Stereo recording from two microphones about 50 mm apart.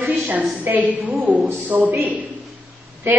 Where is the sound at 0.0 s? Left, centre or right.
Right.